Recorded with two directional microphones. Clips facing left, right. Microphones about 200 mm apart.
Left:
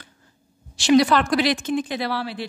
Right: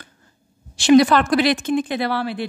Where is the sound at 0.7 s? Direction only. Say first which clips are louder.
Right 4 dB; 55° right (ahead or behind).